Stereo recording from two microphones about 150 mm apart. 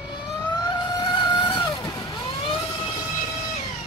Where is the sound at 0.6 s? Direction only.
30° left (ahead or behind).